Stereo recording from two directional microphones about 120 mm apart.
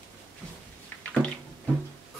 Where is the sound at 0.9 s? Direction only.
15° left (ahead or behind).